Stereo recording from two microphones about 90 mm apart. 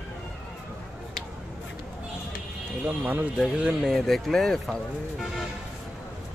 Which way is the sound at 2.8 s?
20° right (ahead or behind).